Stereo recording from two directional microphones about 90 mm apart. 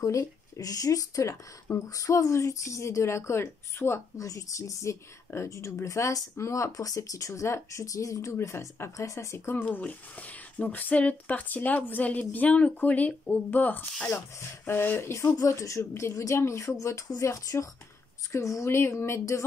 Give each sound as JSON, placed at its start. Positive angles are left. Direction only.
{"t": 0.0, "sound": "speech", "side_deg": 35}